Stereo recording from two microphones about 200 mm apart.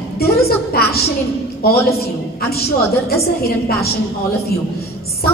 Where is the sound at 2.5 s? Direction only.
50° left (ahead or behind).